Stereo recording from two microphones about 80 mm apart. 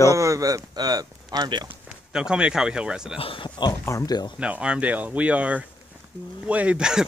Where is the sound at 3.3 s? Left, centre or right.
Left.